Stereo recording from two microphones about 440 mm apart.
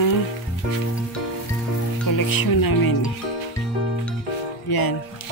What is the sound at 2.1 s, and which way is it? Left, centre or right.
Music, left.